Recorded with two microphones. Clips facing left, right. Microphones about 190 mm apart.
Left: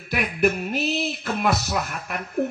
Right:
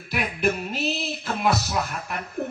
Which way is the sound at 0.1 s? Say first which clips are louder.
Left 3 dB; 60° left (ahead or behind).